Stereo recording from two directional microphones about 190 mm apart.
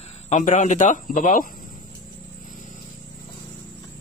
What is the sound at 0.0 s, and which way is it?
Speech, 35° left (ahead or behind).